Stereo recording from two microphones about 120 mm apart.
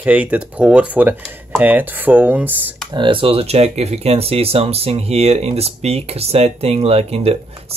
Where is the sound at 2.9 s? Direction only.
45° right (ahead or behind).